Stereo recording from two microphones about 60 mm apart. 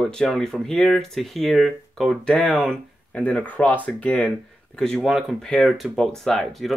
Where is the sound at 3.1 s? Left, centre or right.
Left.